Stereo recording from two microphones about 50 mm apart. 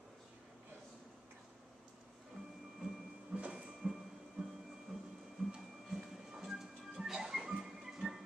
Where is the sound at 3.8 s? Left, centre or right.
Centre.